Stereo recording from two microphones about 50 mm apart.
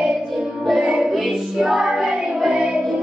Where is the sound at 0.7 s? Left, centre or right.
Centre.